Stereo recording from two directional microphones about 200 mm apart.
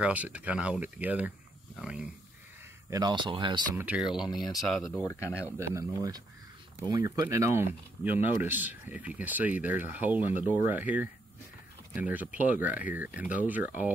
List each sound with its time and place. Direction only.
0.0 s speech: 5° right (ahead or behind)
2.9 s speech: 20° right (ahead or behind)
3.7 s speech: 5° right (ahead or behind)
5.0 s speech: 15° left (ahead or behind)
5.8 s speech: 20° right (ahead or behind)